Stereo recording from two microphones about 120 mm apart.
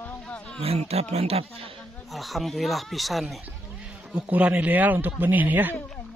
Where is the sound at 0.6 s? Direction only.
60° right (ahead or behind).